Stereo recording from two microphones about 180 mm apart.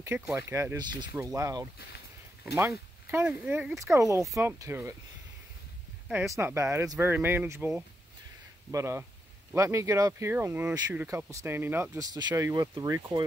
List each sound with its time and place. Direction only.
0.0 s speech: 15° right (ahead or behind)
6.0 s speech: 15° right (ahead or behind)